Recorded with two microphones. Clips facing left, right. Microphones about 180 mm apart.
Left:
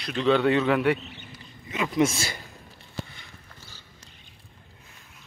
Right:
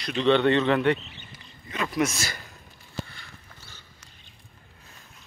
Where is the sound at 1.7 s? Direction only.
20° left (ahead or behind).